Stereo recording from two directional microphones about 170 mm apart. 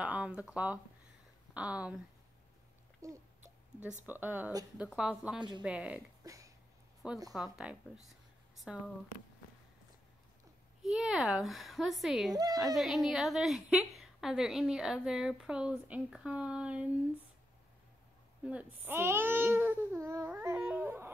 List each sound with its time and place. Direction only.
0.0 s speech: 10° right (ahead or behind)
3.0 s a woman's voice: 20° right (ahead or behind)
6.2 s burping: 20° right (ahead or behind)
7.0 s a woman's voice: 5° right (ahead or behind)
10.8 s a woman's voice: centre (ahead or behind)
12.3 s a woman's voice: 20° right (ahead or behind)
12.7 s a woman's voice: centre (ahead or behind)
18.4 s speech: 5° right (ahead or behind)